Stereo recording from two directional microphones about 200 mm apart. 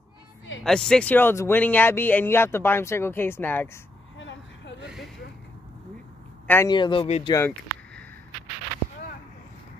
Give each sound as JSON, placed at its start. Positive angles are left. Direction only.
{"t": 0.7, "sound": "speech", "side_deg": 5}
{"t": 4.2, "sound": "vehicle", "side_deg": 65}
{"t": 4.8, "sound": "a sound", "side_deg": 0}
{"t": 6.4, "sound": "a man's voice", "side_deg": 10}
{"t": 6.7, "sound": "speech", "side_deg": 25}
{"t": 7.3, "sound": "a sound", "side_deg": 10}